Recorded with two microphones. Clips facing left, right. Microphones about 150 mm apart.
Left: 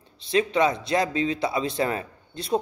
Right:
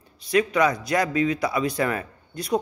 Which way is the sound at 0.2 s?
25° left (ahead or behind).